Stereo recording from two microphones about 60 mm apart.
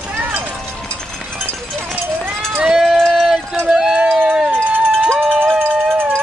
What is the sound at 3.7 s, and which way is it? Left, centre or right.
Speech, centre.